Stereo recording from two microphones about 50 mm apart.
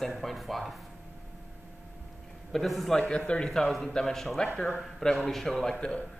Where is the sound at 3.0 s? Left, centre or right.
Centre.